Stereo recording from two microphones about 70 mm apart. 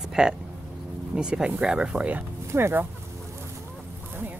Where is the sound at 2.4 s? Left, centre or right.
Right.